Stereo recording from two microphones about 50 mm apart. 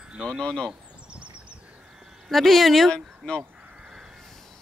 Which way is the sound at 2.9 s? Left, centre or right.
Centre.